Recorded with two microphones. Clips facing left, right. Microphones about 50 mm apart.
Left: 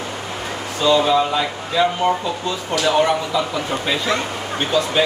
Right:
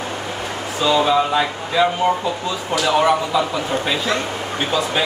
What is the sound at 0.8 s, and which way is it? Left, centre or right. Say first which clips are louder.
Speech: left 1 dB; centre.